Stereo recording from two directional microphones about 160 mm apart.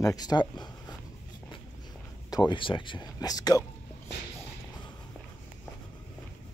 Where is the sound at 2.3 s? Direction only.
30° left (ahead or behind).